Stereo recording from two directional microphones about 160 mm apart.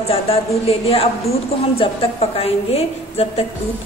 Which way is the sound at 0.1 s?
40° left (ahead or behind).